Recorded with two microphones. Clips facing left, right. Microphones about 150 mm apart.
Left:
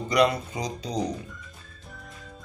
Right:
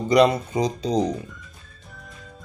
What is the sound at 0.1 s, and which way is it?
Speech, 25° right (ahead or behind).